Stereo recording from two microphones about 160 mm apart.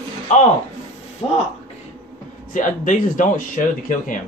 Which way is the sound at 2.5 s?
55° left (ahead or behind).